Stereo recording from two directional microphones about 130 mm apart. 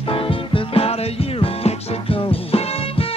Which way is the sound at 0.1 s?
45° left (ahead or behind).